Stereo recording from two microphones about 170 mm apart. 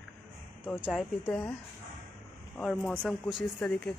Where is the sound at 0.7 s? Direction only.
5° right (ahead or behind).